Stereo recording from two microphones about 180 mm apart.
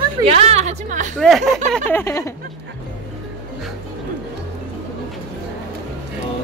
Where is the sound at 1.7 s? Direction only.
10° left (ahead or behind).